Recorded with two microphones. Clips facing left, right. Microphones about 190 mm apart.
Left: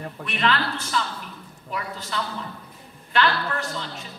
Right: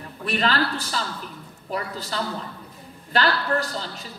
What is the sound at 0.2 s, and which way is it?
A woman's voice, 35° right (ahead or behind).